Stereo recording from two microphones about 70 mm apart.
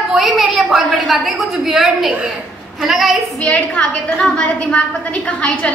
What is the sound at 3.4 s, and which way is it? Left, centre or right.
A woman's voice, centre.